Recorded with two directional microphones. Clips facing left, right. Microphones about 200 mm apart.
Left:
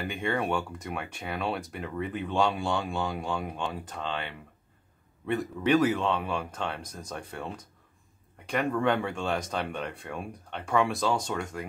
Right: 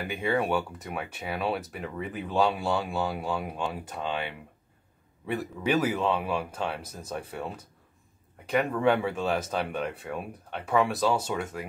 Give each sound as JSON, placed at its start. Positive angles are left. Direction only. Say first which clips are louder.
{"t": 0.0, "sound": "speech", "louder": "right 2 dB", "side_deg": -5}